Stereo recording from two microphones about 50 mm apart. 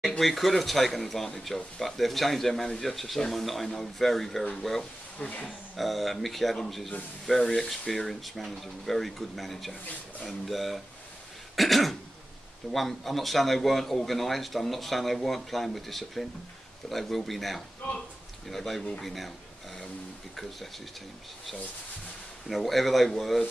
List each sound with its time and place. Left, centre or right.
0.2 s speech: centre
5.2 s speech: centre
5.8 s speech: centre
22.5 s speech: centre